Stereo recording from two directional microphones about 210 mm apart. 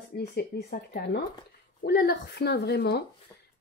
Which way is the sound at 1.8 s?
45° left (ahead or behind).